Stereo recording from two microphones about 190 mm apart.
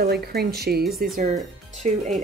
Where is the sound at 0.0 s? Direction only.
55° right (ahead or behind).